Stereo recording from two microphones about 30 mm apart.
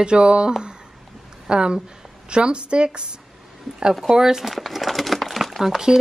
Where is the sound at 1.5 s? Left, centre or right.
Right.